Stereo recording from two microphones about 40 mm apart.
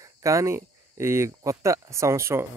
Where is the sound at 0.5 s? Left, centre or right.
Right.